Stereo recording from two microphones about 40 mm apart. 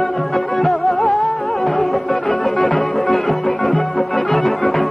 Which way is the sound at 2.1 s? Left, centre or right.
Centre.